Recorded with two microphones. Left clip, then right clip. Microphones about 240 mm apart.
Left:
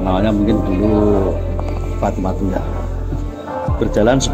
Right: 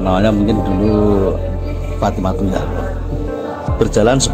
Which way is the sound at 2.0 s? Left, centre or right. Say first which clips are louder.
Right 2 dB; right.